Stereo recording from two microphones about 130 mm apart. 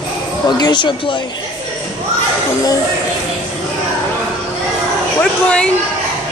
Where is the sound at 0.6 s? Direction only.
35° left (ahead or behind).